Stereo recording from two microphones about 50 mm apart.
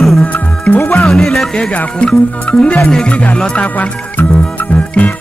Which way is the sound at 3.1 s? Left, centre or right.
Left.